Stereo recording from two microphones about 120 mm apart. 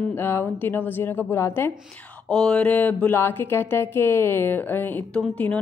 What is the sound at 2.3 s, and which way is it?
A woman's voice, 5° left (ahead or behind).